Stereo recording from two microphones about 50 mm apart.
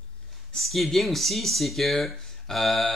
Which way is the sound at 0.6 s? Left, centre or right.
Centre.